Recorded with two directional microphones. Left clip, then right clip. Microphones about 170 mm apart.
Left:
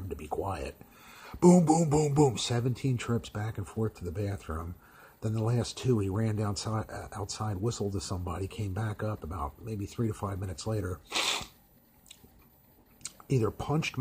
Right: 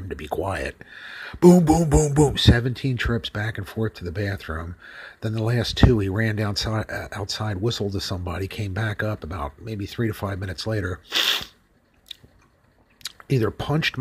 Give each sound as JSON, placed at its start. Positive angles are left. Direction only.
{"t": 0.1, "sound": "speech", "side_deg": -10}
{"t": 1.0, "sound": "speech", "side_deg": -5}
{"t": 11.1, "sound": "speech", "side_deg": 5}
{"t": 13.0, "sound": "a sound", "side_deg": -10}
{"t": 13.6, "sound": "speech", "side_deg": -10}